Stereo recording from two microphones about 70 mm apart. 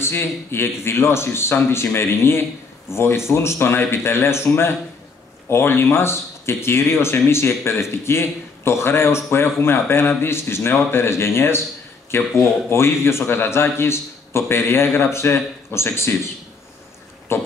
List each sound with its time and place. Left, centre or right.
0.0 s a man's voice: left
17.3 s a man's voice: left